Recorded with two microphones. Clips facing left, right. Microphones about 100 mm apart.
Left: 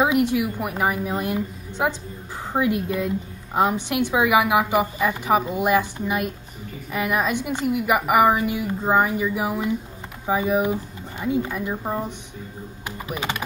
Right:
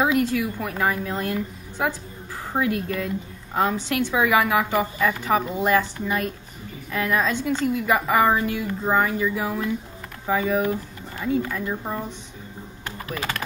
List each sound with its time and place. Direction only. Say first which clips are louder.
0.0 s a woman's voice: left 2 dB; 20° left (ahead or behind)
12.8 s typing: left 1 dB; 15° left (ahead or behind)